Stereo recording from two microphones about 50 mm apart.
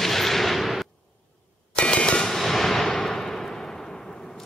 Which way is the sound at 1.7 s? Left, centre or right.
Left.